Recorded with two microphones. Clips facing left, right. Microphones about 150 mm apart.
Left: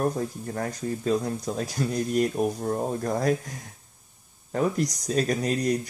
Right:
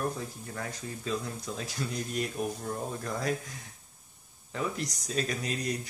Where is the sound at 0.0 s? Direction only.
45° left (ahead or behind).